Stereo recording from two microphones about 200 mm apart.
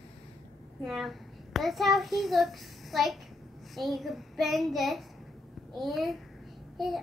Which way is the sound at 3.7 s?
Centre (ahead or behind).